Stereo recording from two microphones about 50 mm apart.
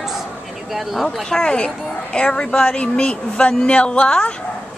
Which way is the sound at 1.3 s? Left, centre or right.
Centre.